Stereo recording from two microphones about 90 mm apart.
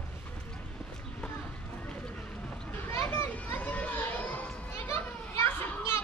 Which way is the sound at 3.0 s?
25° left (ahead or behind).